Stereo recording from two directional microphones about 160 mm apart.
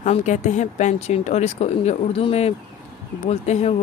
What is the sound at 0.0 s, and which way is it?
Speech, 45° left (ahead or behind).